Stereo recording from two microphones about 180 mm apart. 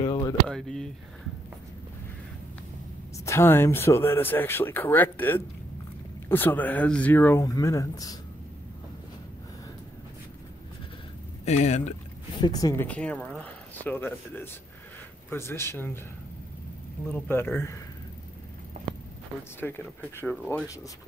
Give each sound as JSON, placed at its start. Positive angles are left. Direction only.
{"t": 0.0, "sound": "a sound", "side_deg": 25}
{"t": 0.5, "sound": "a sound", "side_deg": 0}
{"t": 3.3, "sound": "speech", "side_deg": 15}
{"t": 11.4, "sound": "speech", "side_deg": 40}
{"t": 12.4, "sound": "speech", "side_deg": 20}
{"t": 12.8, "sound": "speech", "side_deg": 5}
{"t": 17.1, "sound": "speech", "side_deg": 10}
{"t": 19.6, "sound": "speech", "side_deg": 10}